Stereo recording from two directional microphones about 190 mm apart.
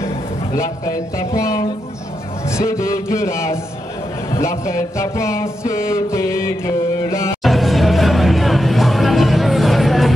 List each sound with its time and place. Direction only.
0.6 s speech: 15° left (ahead or behind)
6.1 s music: 15° left (ahead or behind)
7.4 s music: centre (ahead or behind)